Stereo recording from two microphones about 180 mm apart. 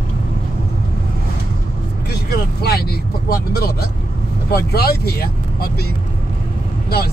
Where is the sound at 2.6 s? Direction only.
60° left (ahead or behind).